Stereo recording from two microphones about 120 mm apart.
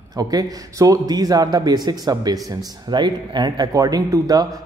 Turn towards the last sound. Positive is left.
turn(degrees=-30)  # may be behind; listen again after turning